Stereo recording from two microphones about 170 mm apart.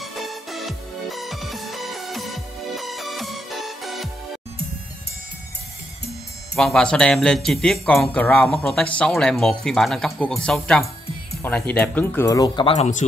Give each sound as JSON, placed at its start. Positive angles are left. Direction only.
{"t": 0.0, "sound": "music", "side_deg": 0}
{"t": 6.5, "sound": "speech", "side_deg": 5}
{"t": 12.7, "sound": "speech", "side_deg": 40}